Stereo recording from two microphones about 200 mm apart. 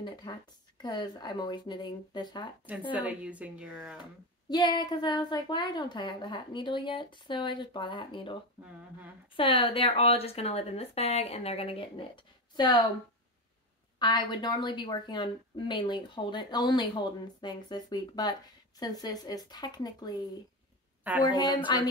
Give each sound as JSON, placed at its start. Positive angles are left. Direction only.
{"t": 0.0, "sound": "speech", "side_deg": 20}
{"t": 2.9, "sound": "speech", "side_deg": -5}
{"t": 4.5, "sound": "speech", "side_deg": 20}
{"t": 9.4, "sound": "a woman's voice", "side_deg": 25}
{"t": 13.9, "sound": "speech", "side_deg": 20}
{"t": 21.2, "sound": "speech", "side_deg": 20}